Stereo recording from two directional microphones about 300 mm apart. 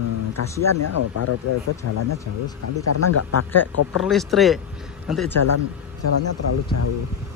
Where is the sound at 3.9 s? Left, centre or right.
Centre.